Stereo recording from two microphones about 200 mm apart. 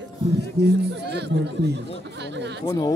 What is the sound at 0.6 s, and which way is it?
Speech, 55° right (ahead or behind).